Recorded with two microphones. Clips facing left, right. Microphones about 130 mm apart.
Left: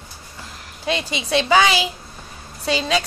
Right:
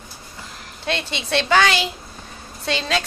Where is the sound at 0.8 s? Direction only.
5° left (ahead or behind).